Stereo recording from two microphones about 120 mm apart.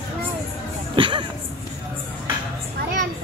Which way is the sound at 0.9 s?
45° right (ahead or behind).